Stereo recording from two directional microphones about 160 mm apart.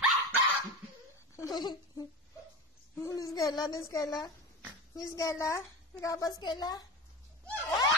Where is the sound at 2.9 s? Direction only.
20° left (ahead or behind).